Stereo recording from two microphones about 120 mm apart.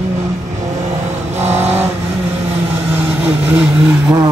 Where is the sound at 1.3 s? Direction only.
65° right (ahead or behind).